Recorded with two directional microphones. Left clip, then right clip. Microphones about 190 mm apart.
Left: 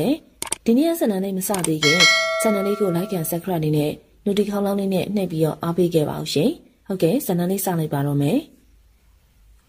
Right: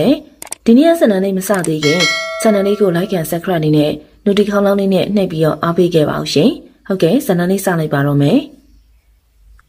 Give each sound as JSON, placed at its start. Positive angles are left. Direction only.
{"t": 0.7, "sound": "a woman's voice", "side_deg": 40}
{"t": 1.8, "sound": "speech", "side_deg": 0}
{"t": 2.9, "sound": "a woman's voice", "side_deg": 40}